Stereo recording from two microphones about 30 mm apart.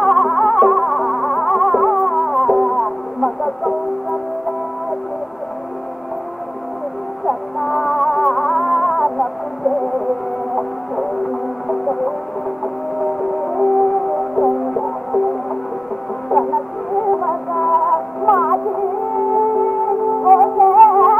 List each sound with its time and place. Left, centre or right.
0.0 s music: centre
7.2 s music: centre
11.6 s music: centre
16.3 s music: left
17.1 s music: centre
18.5 s music: centre